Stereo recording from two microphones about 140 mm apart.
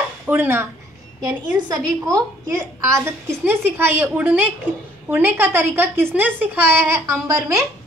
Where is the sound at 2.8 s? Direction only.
20° right (ahead or behind).